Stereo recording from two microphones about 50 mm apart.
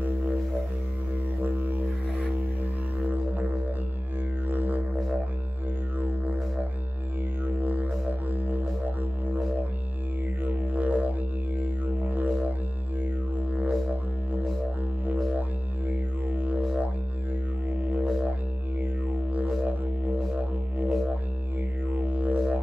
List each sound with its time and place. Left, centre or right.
1.4 s music: right
3.1 s music: right
5.9 s music: right
10.4 s music: right
15.9 s music: right
21.9 s music: right